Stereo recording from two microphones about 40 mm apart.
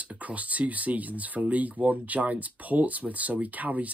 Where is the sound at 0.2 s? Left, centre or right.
Right.